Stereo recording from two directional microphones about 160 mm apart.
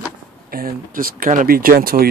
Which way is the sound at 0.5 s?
65° right (ahead or behind).